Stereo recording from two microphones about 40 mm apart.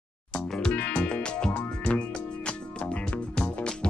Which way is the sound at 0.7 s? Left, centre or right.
Left.